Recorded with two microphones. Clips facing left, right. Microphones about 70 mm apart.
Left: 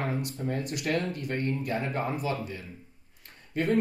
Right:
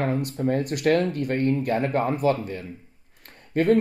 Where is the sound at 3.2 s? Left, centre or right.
Right.